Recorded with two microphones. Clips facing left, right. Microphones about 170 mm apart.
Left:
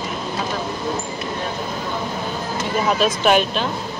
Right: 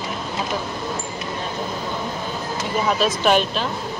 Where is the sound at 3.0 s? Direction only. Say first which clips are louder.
Left 2 dB; centre (ahead or behind).